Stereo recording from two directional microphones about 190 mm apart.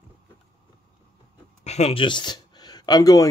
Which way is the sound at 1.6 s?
35° left (ahead or behind).